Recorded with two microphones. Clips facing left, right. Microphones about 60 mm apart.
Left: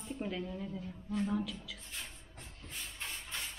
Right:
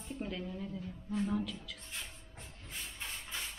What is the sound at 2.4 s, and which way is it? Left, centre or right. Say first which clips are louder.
Vehicle: even; centre.